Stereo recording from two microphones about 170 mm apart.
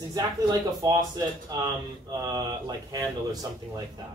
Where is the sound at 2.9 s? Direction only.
20° right (ahead or behind).